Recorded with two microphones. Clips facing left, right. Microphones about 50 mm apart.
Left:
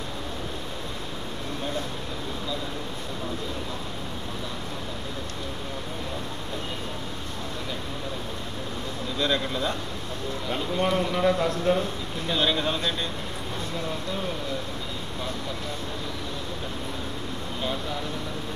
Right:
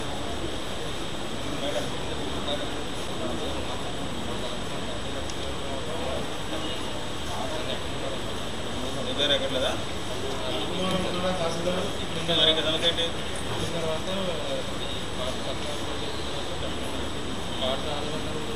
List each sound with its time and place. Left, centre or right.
9.2 s speech: centre
10.8 s a sound: left
12.3 s speech: centre